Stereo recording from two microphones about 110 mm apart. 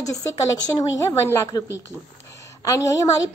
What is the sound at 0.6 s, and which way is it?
Speech, 35° left (ahead or behind).